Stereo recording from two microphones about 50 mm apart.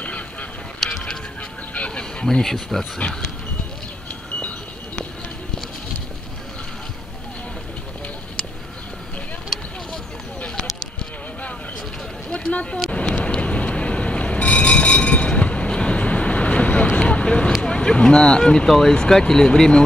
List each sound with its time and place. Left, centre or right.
0.0 s goose: left
0.8 s music: centre
1.7 s a sound: left
2.4 s speech: centre
3.0 s speech: left
12.3 s a sound: left
13.0 s vehicle: centre